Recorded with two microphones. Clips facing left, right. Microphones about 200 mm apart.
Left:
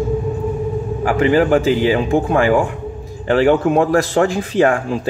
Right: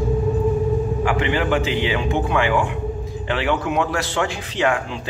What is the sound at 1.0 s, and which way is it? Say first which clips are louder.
A man's voice: left 11 dB; 40° left (ahead or behind).